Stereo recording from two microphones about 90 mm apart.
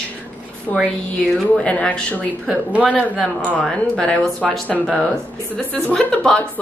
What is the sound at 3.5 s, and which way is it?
A woman's voice, 10° left (ahead or behind).